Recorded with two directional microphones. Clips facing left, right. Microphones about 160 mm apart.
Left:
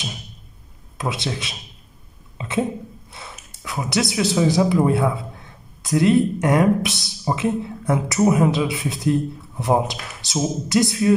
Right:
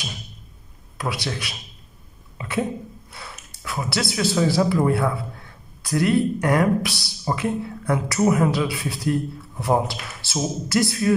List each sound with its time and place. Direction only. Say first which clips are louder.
0.9 s speech: left 2 dB; 20° left (ahead or behind)
2.3 s a sound: left 2 dB; 20° left (ahead or behind)
3.1 s speech: left 1 dB; 20° left (ahead or behind)